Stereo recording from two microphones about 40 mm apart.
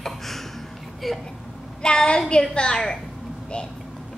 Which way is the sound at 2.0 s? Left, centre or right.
Left.